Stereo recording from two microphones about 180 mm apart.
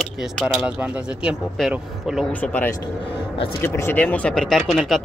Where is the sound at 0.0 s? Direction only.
Centre (ahead or behind).